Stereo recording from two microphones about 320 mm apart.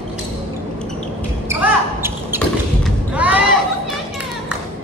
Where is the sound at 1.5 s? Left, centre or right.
Centre.